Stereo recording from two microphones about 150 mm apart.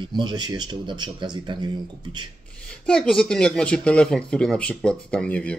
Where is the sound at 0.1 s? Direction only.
30° right (ahead or behind).